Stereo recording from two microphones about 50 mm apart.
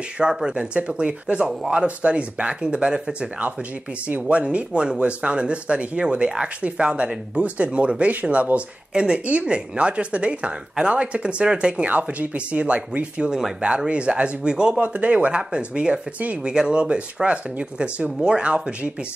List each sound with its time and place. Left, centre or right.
0.2 s speech: centre